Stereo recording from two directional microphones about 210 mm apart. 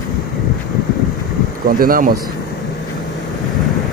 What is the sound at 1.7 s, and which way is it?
Speech, 45° right (ahead or behind).